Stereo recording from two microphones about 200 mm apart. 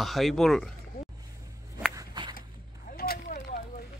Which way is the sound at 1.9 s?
20° right (ahead or behind).